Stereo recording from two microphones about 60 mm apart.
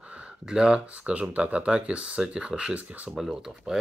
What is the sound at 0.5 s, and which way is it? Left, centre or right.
Speech, centre.